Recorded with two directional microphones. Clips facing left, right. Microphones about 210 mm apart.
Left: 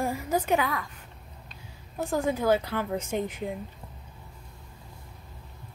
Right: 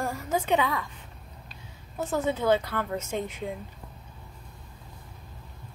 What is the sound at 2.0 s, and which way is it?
A woman's voice, 15° left (ahead or behind).